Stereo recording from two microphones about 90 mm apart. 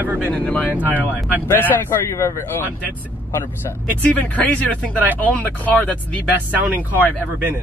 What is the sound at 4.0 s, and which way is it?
Speech, 15° left (ahead or behind).